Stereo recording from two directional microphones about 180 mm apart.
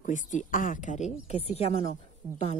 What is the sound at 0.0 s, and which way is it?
Speech, 45° left (ahead or behind).